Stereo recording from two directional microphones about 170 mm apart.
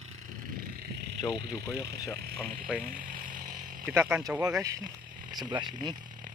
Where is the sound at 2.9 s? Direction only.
50° right (ahead or behind).